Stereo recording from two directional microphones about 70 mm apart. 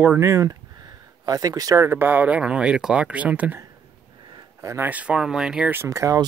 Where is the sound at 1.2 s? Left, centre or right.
Right.